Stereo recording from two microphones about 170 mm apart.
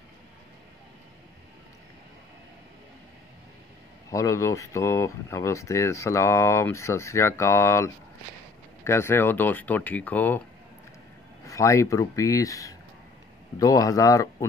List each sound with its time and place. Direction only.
4.1 s speech: 20° left (ahead or behind)
11.4 s speech: 20° left (ahead or behind)